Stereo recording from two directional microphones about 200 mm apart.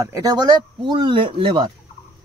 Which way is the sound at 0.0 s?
15° right (ahead or behind).